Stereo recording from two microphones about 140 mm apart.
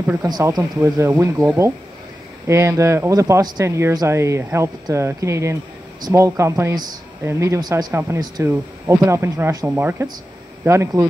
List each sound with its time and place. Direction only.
0.2 s speech: 25° right (ahead or behind)